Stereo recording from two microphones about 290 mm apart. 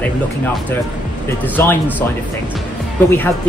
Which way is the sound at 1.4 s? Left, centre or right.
Centre.